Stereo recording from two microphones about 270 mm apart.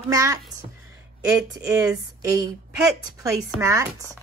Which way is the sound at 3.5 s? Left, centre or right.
Centre.